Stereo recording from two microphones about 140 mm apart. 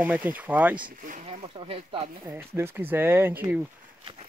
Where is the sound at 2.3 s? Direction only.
15° right (ahead or behind).